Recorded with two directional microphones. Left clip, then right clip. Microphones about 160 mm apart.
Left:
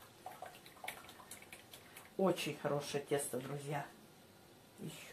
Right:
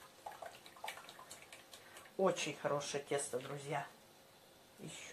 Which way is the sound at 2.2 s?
45° right (ahead or behind).